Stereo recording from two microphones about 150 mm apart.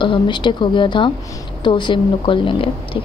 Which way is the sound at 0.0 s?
30° left (ahead or behind).